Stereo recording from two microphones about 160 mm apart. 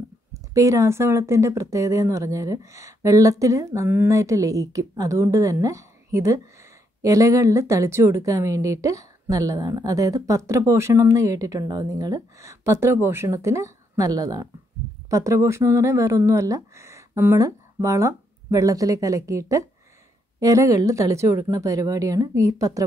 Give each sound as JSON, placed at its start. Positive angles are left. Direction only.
{"t": 0.3, "sound": "a woman's voice", "side_deg": -20}